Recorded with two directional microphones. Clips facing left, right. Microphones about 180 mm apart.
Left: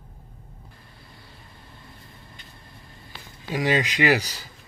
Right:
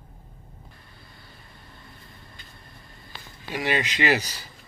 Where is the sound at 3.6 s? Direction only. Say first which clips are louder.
Left 3 dB; 15° left (ahead or behind).